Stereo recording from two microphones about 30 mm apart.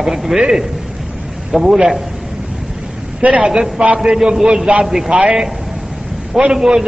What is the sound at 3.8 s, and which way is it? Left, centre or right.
Speech, right.